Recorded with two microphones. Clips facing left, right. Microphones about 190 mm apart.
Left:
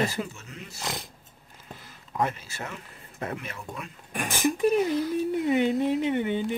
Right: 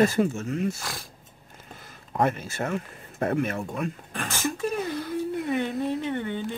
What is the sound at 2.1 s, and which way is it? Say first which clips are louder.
Speech: right 4 dB; 50° right (ahead or behind).